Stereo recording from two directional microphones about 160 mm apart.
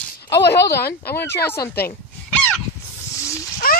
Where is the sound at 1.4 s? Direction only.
15° left (ahead or behind).